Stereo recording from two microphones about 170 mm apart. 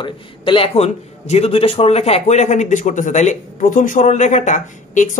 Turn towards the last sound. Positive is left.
turn(degrees=50)  # may be behind; listen again after turning